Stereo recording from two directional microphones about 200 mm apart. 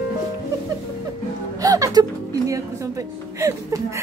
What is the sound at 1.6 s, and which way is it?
A woman's voice, 15° right (ahead or behind).